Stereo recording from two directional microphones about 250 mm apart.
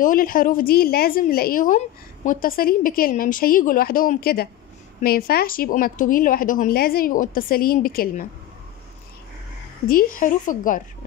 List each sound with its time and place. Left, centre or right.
0.0 s a woman's voice: left
9.8 s a woman's voice: left